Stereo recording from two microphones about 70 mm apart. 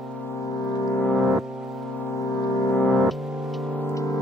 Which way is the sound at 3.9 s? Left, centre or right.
Left.